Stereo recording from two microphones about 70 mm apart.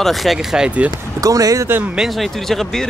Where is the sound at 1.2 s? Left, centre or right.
Right.